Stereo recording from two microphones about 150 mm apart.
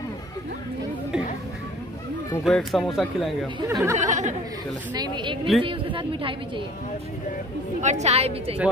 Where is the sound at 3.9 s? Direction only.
55° right (ahead or behind).